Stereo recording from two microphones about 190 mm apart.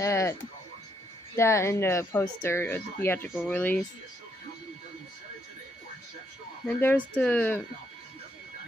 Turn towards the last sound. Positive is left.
turn(degrees=10)  # may be behind; listen again after turning